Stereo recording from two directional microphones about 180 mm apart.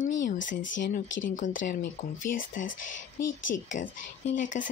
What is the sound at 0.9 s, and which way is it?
Speech, 45° left (ahead or behind).